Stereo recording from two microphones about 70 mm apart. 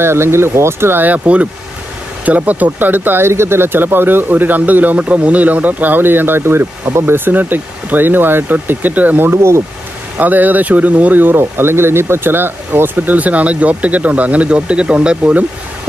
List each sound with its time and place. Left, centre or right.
0.0 s speech: right
10.1 s speech: right